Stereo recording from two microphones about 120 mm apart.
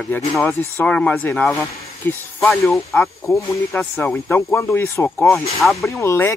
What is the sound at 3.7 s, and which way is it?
Speech, 15° left (ahead or behind).